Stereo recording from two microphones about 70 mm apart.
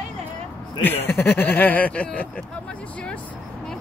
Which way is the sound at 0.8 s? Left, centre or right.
Left.